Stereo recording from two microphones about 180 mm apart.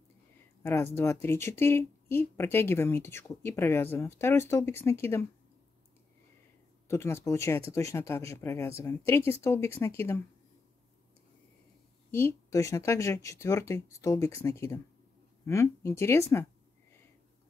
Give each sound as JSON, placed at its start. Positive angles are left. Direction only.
{"t": 0.6, "sound": "speech", "side_deg": 15}
{"t": 6.9, "sound": "speech", "side_deg": 15}
{"t": 12.1, "sound": "speech", "side_deg": 15}